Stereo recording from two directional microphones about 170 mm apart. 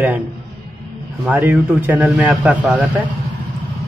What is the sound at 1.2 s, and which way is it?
A man's voice, 10° right (ahead or behind).